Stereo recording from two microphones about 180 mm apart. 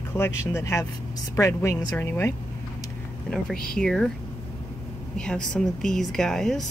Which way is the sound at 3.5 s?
55° left (ahead or behind).